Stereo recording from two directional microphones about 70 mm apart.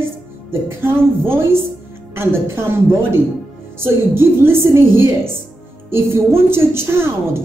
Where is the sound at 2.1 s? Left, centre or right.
Right.